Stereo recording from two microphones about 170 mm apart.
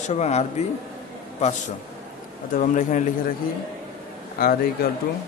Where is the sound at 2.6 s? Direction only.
50° left (ahead or behind).